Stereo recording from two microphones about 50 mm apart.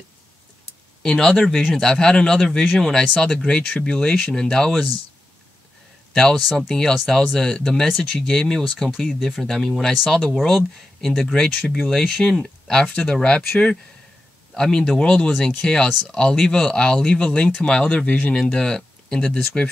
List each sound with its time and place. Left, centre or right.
1.0 s speech: centre
6.1 s speech: centre
14.5 s speech: centre
18.3 s speech: centre